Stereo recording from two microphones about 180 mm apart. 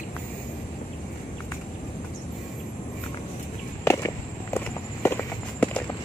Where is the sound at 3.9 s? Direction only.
15° left (ahead or behind).